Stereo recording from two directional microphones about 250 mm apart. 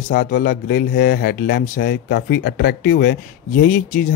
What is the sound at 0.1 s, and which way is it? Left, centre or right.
Speech, left.